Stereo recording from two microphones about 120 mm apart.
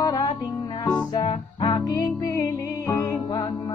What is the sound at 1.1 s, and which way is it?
Music, 50° left (ahead or behind).